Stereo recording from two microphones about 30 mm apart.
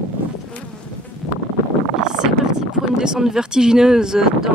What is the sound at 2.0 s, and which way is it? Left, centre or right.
Speech, right.